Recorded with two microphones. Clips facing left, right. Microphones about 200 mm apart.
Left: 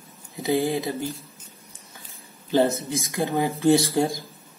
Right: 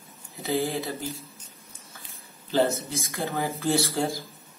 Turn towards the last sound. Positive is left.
turn(degrees=15)  # may be behind; listen again after turning